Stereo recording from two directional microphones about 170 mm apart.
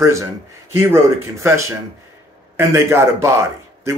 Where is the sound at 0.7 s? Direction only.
15° right (ahead or behind).